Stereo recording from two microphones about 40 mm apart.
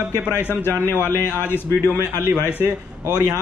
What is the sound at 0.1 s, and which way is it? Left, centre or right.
A man's voice, left.